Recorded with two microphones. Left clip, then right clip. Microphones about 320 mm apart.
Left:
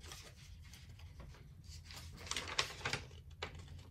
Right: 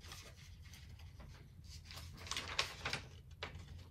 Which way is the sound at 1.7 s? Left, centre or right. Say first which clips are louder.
Even; left.